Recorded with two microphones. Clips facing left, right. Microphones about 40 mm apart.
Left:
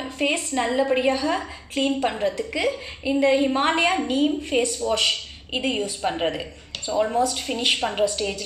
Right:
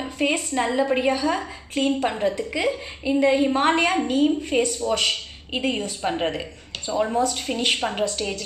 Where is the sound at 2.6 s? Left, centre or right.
Centre.